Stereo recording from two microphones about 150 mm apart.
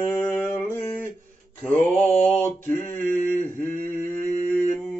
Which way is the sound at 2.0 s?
10° left (ahead or behind).